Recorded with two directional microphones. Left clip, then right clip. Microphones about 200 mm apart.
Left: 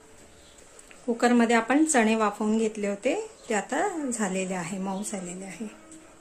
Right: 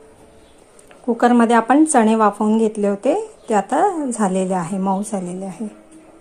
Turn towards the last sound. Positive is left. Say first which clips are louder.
# right 11 dB
turn(degrees=-20)  # may be behind; listen again after turning